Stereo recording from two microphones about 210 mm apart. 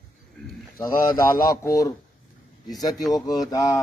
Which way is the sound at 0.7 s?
15° left (ahead or behind).